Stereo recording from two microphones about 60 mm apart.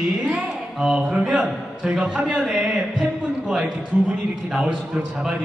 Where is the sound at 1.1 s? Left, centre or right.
Centre.